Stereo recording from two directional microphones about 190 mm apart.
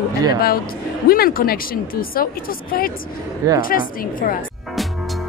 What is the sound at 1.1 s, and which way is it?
A woman's voice, 50° left (ahead or behind).